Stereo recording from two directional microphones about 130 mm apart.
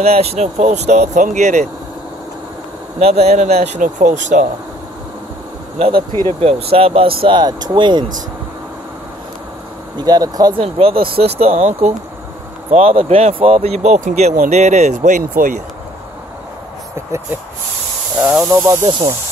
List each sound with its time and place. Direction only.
0.0 s speech: 50° right (ahead or behind)
3.0 s speech: 50° right (ahead or behind); by 4.5 s 70° right (ahead or behind)
5.8 s speech: 40° right (ahead or behind)
9.9 s speech: 30° right (ahead or behind)
10.6 s speech: 45° right (ahead or behind)
12.7 s speech: 50° right (ahead or behind); by 15.6 s 80° right
18.5 s speech: 20° right (ahead or behind)
18.9 s speech: 40° right (ahead or behind)